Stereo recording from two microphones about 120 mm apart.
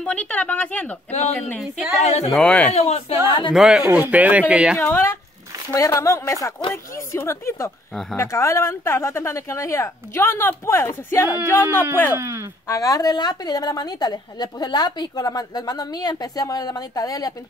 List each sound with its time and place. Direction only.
0.0 s speech: 10° left (ahead or behind)
2.0 s speech: 65° left (ahead or behind)
2.3 s speech: 10° left (ahead or behind)
2.7 s speech: 60° left (ahead or behind)
3.3 s a woman's voice: 40° left (ahead or behind)
3.5 s speech: 5° right (ahead or behind)
4.7 s speech: 20° left (ahead or behind)
7.9 s speech: 5° left (ahead or behind)
8.2 s speech: 25° left (ahead or behind)
12.2 s speech: 20° right (ahead or behind)
12.6 s a woman's voice: 30° left (ahead or behind)